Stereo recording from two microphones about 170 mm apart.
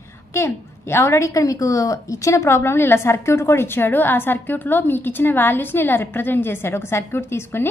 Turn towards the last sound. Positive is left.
turn(degrees=15)  # may be behind; listen again after turning